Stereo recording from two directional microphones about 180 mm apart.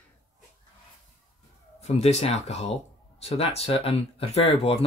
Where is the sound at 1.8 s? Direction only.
35° left (ahead or behind).